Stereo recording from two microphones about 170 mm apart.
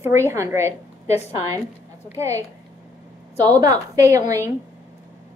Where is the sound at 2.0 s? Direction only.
15° right (ahead or behind).